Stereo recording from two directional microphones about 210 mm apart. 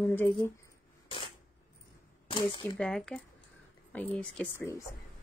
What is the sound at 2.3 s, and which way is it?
Speech, 25° left (ahead or behind).